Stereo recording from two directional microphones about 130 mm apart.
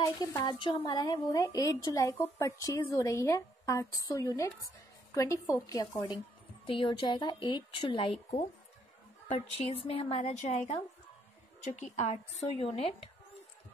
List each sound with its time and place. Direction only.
0.0 s a woman's voice: 30° left (ahead or behind)
0.6 s a woman's voice: 40° left (ahead or behind)
9.7 s a woman's voice: 45° left (ahead or behind)